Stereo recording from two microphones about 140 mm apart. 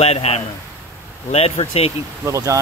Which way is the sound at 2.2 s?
20° right (ahead or behind).